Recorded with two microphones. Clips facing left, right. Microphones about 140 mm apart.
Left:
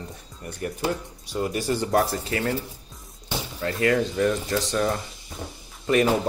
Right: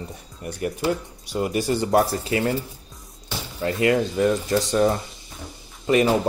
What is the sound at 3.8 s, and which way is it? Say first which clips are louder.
Speech: right 2 dB; 15° right (ahead or behind).